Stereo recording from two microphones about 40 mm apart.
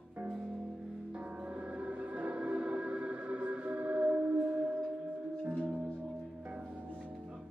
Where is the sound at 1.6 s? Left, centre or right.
Right.